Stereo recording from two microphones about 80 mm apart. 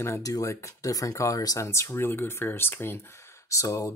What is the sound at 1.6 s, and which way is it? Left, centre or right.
Speech, left.